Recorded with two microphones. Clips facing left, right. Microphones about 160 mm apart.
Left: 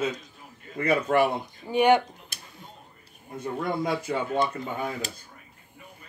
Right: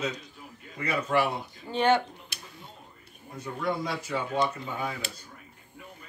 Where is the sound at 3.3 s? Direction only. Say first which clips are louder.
Left 2 dB; 50° left (ahead or behind).